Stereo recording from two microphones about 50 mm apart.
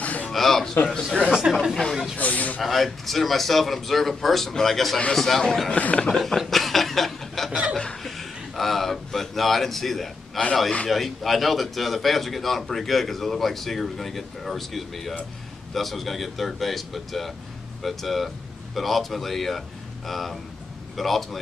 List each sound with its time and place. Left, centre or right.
0.0 s a sound: left
0.3 s a man's voice: centre
2.1 s speech: left
2.6 s a man's voice: centre
5.7 s speech: left
6.0 s speech: centre
7.7 s chuckle: centre
10.9 s a man's voice: centre